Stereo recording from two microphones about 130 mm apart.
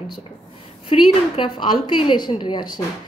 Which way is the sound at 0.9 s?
55° left (ahead or behind).